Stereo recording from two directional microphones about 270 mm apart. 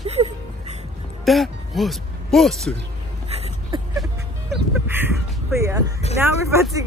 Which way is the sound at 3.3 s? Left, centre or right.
Right.